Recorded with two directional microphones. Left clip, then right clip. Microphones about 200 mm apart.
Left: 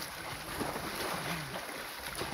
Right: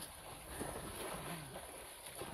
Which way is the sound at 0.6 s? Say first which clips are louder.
Left 9 dB; 20° left (ahead or behind).